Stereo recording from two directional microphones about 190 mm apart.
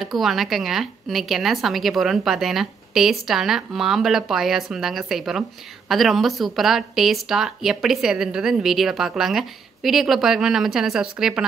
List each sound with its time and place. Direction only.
0.0 s speech: centre (ahead or behind)